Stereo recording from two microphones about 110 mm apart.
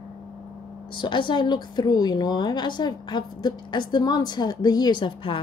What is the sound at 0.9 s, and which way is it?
A woman's voice, 45° left (ahead or behind).